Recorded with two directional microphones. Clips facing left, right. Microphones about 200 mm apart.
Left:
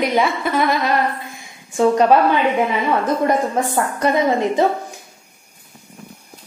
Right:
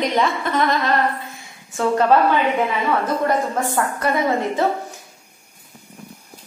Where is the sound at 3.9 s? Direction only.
20° left (ahead or behind).